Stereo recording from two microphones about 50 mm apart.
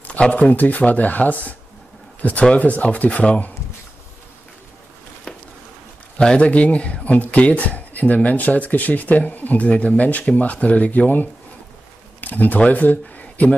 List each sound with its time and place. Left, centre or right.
0.3 s speech: left
6.1 s speech: left